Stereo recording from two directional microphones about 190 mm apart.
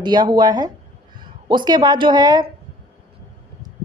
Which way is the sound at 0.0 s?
20° right (ahead or behind).